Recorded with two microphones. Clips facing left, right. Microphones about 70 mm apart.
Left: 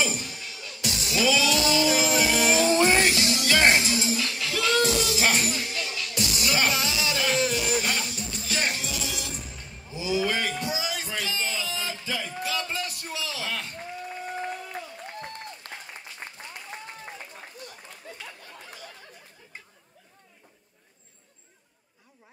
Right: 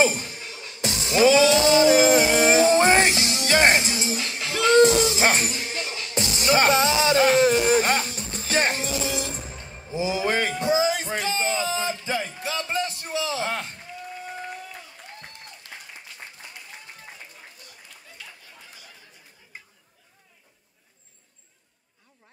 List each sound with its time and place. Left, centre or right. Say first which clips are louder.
0.0 s music: right 7 dB; right
12.4 s a sound: right 3 dB; right
15.7 s applause: left 2 dB; left
18.1 s chatter: left 4 dB; left